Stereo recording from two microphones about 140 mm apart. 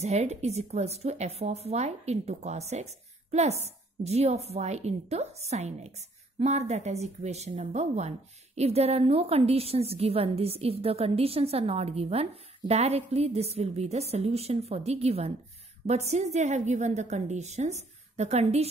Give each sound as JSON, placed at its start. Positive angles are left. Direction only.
{"t": 0.0, "sound": "speech", "side_deg": -50}